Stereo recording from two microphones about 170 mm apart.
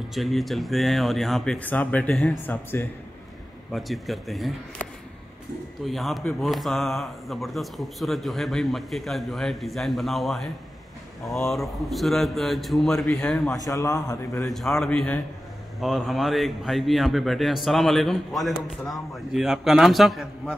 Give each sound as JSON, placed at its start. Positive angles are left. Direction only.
{"t": 0.1, "sound": "a man's voice", "side_deg": 0}
{"t": 3.7, "sound": "a man's voice", "side_deg": 0}
{"t": 5.9, "sound": "a man's voice", "side_deg": 0}
{"t": 13.6, "sound": "a man's voice", "side_deg": 20}
{"t": 14.5, "sound": "a man's voice", "side_deg": 0}